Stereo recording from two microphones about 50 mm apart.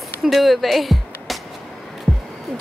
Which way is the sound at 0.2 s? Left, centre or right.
Centre.